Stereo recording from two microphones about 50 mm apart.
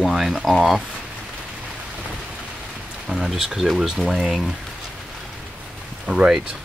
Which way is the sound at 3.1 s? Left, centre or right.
Centre.